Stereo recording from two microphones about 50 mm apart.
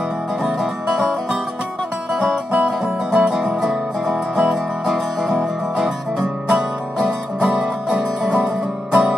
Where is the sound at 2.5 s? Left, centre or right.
Right.